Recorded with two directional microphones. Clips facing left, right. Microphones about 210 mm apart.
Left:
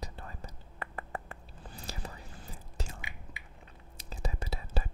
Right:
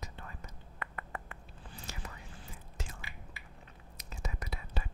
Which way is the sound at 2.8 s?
35° left (ahead or behind).